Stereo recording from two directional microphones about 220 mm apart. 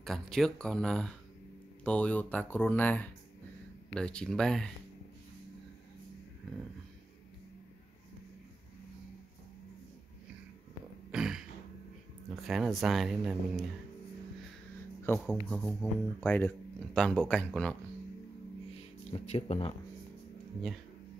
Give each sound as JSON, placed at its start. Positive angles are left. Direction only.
{"t": 0.3, "sound": "speech", "side_deg": 0}
{"t": 11.1, "sound": "throat clearing", "side_deg": 0}
{"t": 12.4, "sound": "speech", "side_deg": 0}
{"t": 15.0, "sound": "speech", "side_deg": 5}
{"t": 19.0, "sound": "speech", "side_deg": 30}